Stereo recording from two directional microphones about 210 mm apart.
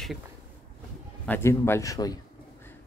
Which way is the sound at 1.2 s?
10° left (ahead or behind).